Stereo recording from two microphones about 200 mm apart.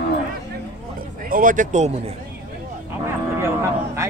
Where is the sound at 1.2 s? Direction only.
45° right (ahead or behind).